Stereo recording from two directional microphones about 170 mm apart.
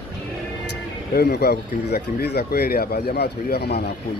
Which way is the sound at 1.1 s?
70° left (ahead or behind).